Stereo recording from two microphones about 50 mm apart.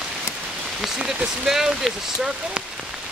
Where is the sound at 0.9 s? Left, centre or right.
Centre.